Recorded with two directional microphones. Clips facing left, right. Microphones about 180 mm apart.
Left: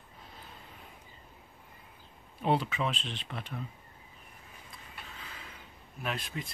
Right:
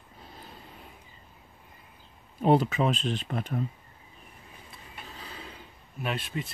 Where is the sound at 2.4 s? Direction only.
40° right (ahead or behind).